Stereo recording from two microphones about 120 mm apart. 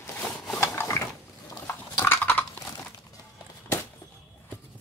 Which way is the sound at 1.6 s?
15° left (ahead or behind).